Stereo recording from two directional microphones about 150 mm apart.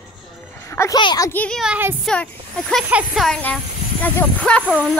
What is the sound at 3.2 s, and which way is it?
Speech, 5° left (ahead or behind).